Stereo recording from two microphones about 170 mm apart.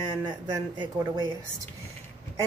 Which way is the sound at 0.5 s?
25° right (ahead or behind).